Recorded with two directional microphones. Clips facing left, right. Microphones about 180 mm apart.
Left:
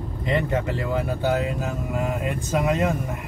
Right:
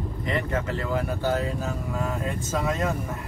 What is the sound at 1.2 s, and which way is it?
Speech, 20° left (ahead or behind).